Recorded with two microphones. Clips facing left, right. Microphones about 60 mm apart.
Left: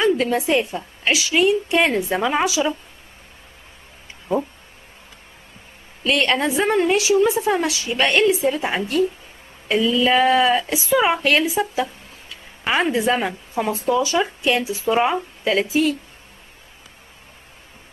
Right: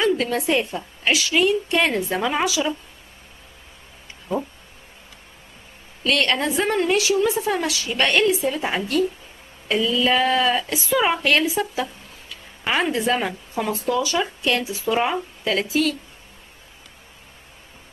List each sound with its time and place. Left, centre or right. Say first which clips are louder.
0.0 s a woman's voice: left 2 dB; centre
6.0 s a woman's voice: left 2 dB; centre
8.0 s a woman's voice: left 2 dB; centre
14.4 s speech: left 2 dB; left
14.9 s a woman's voice: left 3 dB; centre